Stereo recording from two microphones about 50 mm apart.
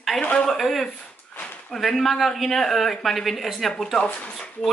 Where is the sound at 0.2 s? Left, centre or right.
Left.